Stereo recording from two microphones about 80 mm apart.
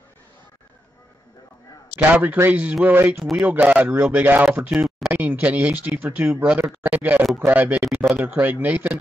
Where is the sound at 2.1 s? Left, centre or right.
Right.